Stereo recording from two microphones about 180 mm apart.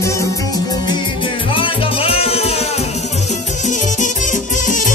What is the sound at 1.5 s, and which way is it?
Music, 30° left (ahead or behind).